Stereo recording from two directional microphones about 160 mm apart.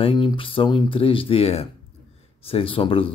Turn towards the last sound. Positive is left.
turn(degrees=35)  # may be behind; listen again after turning